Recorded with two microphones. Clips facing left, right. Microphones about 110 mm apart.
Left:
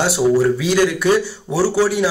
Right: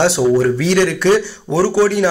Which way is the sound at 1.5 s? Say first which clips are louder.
Right 3 dB; 50° right (ahead or behind).